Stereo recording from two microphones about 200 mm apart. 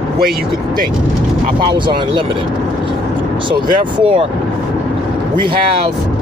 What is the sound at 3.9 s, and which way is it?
Speech, 25° right (ahead or behind).